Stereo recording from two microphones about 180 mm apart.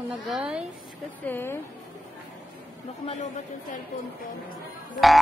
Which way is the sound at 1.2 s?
10° left (ahead or behind).